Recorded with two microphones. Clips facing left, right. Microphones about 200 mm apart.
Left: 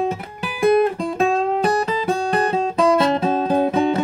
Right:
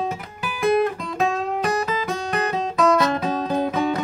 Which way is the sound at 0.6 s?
25° left (ahead or behind).